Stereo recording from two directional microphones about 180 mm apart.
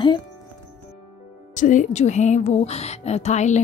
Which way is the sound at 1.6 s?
45° left (ahead or behind).